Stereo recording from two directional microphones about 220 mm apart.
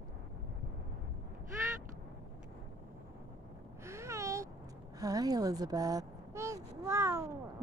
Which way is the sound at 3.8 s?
15° right (ahead or behind).